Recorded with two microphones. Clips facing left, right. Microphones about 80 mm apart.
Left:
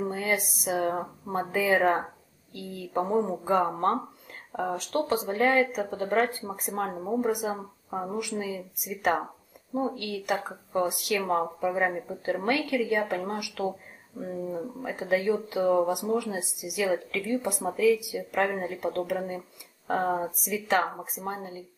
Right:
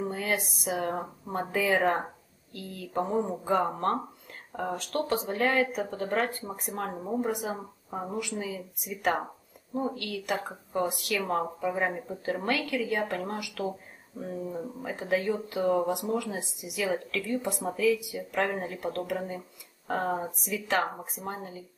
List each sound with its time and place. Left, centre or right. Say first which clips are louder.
0.0 s speech: left 2 dB; centre